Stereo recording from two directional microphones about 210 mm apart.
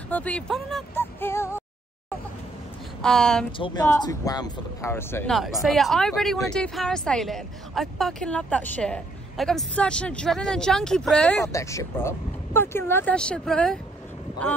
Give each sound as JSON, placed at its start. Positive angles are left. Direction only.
{"t": 0.1, "sound": "speech", "side_deg": 5}
{"t": 3.0, "sound": "speech", "side_deg": 5}
{"t": 3.5, "sound": "speech", "side_deg": 20}
{"t": 5.3, "sound": "speech", "side_deg": 0}